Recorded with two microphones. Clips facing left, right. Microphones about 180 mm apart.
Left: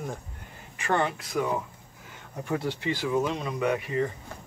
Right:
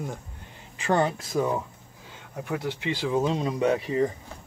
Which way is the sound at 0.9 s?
35° right (ahead or behind).